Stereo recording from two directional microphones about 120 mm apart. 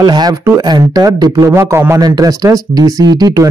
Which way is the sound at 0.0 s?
35° right (ahead or behind).